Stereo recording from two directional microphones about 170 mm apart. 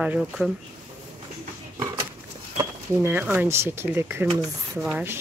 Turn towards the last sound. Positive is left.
turn(degrees=-10)  # may be behind; listen again after turning